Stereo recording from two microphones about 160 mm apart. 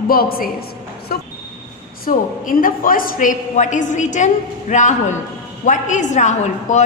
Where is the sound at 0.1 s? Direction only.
65° left (ahead or behind).